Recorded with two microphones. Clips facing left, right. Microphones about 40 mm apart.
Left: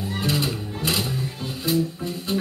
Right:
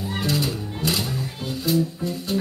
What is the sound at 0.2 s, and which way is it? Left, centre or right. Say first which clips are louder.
Music: even; centre.